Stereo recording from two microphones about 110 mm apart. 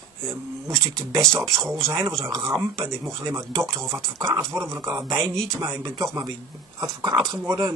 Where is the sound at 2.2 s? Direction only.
25° right (ahead or behind).